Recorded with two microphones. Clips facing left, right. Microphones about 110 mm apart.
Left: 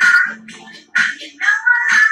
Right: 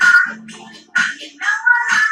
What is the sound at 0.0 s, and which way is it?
Music, 30° right (ahead or behind).